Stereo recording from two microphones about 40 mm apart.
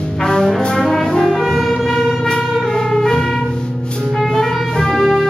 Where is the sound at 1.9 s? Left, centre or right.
Centre.